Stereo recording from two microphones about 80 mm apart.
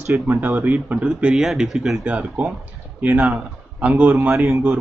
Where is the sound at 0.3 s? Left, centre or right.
Right; by 2.0 s centre.